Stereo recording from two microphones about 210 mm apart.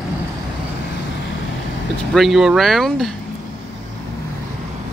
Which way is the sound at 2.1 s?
Centre (ahead or behind).